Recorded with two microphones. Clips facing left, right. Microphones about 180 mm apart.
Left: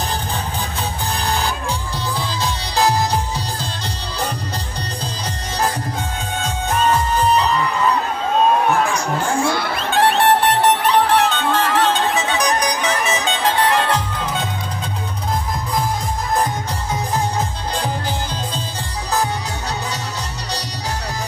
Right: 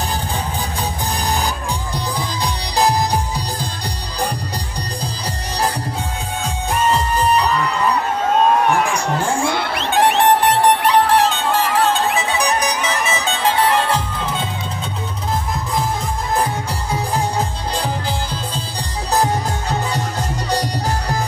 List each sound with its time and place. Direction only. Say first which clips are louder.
9.9 s music: right 1 dB; 15° right (ahead or behind)
19.2 s music: right 4 dB; 50° right (ahead or behind)